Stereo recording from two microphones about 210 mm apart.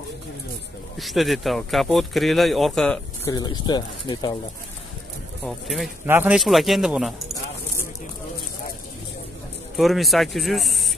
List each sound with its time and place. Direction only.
0.9 s speech: centre (ahead or behind)
3.3 s speech: 20° left (ahead or behind)
5.4 s speech: centre (ahead or behind)
9.8 s speech: centre (ahead or behind)